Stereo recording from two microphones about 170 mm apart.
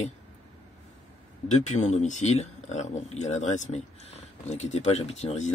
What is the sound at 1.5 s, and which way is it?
Speech, 45° left (ahead or behind).